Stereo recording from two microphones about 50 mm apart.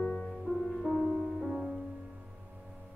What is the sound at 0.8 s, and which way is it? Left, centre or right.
Music, centre.